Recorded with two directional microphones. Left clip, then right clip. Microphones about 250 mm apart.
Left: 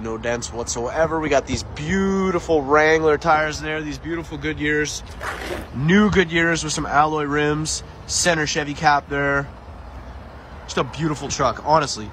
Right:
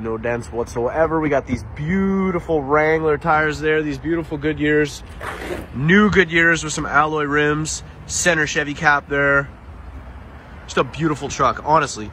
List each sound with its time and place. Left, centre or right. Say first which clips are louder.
0.0 s speech: right 2 dB; centre
10.7 s speech: right 4 dB; centre